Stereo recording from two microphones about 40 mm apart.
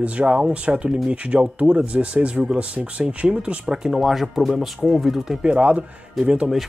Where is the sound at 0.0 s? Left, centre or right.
Right.